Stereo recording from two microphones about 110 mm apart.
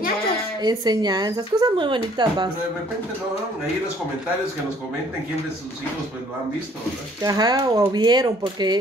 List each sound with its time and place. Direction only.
0.6 s a woman's voice: 40° right (ahead or behind)
7.2 s a woman's voice: 35° right (ahead or behind)